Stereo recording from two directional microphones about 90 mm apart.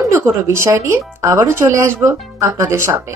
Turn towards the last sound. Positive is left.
turn(degrees=-30)  # may be behind; listen again after turning